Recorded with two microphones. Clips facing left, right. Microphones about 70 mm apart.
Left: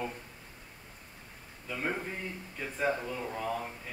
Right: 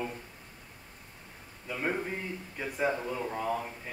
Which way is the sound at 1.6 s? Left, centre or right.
Centre.